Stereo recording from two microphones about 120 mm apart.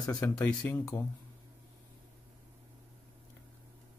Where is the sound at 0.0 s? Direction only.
30° left (ahead or behind).